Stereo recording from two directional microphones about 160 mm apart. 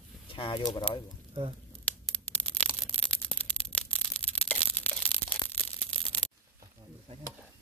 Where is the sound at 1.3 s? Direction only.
35° right (ahead or behind).